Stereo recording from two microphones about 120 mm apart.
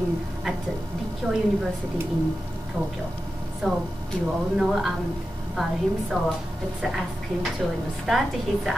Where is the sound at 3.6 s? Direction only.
Centre (ahead or behind).